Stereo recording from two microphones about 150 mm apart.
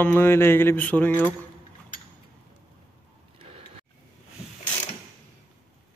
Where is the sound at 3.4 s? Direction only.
40° right (ahead or behind).